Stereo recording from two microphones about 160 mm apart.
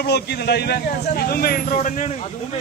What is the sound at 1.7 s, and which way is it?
Speech, 50° left (ahead or behind).